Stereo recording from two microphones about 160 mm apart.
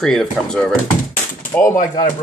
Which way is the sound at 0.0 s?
5° left (ahead or behind).